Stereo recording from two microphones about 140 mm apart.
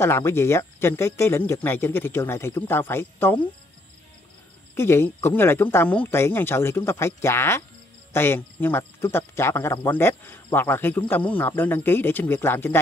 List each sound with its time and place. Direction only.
0.0 s speech: 20° left (ahead or behind)
4.7 s speech: 15° left (ahead or behind)